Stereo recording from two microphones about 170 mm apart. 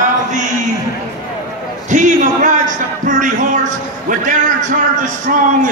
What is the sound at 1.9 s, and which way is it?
A man's voice, 50° right (ahead or behind).